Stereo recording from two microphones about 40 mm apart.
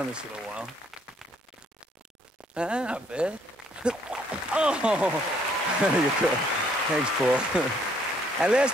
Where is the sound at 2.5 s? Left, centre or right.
Right.